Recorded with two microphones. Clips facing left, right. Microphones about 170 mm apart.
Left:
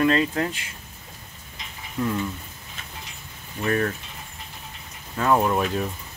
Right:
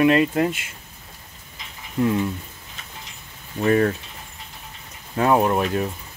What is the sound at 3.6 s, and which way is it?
Speech, 25° right (ahead or behind).